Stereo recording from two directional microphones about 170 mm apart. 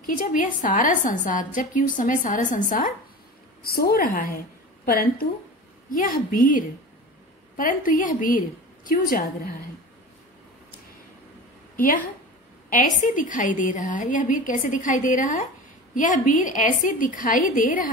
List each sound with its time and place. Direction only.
0.0 s a woman's voice: 55° left (ahead or behind)
3.6 s a woman's voice: 65° left (ahead or behind)
5.9 s a woman's voice: 55° left (ahead or behind)
11.7 s a woman's voice: 55° left (ahead or behind)